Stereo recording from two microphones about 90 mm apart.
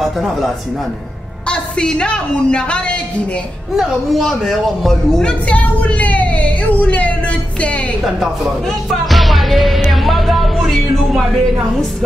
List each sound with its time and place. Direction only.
0.0 s speech: centre (ahead or behind)
1.5 s a woman's voice: 10° left (ahead or behind)
3.7 s speech: centre (ahead or behind)
5.5 s whimper: 15° left (ahead or behind)
9.1 s music: centre (ahead or behind)